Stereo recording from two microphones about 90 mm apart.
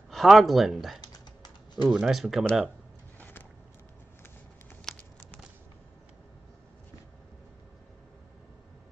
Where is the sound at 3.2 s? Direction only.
20° left (ahead or behind).